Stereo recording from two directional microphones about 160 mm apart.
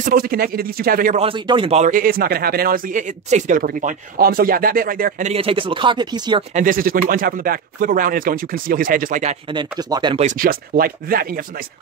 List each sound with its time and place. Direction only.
0.0 s speech: 65° right (ahead or behind)
1.1 s speech: 35° right (ahead or behind)
1.9 s speech: 65° right (ahead or behind)
5.3 s speech: 35° right (ahead or behind)
6.5 s speech: 60° right (ahead or behind)
9.5 s speech: 25° right (ahead or behind)
10.3 s speech: 65° right (ahead or behind)